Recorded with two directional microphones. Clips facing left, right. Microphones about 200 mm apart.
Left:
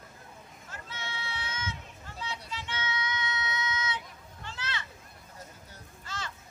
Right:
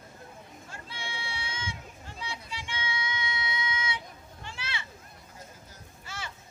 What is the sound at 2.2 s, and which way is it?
Child singing, 10° right (ahead or behind).